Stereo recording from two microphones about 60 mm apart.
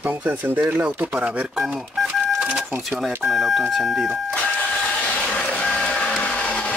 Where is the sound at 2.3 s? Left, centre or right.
Centre.